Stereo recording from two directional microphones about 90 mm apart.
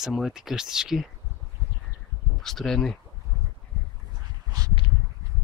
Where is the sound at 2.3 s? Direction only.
5° left (ahead or behind).